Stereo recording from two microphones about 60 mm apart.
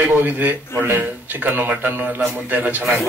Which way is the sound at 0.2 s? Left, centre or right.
Right.